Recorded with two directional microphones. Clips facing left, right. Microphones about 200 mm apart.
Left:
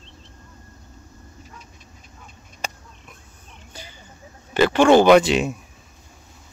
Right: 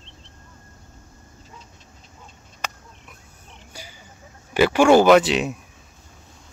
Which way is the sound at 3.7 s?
10° right (ahead or behind).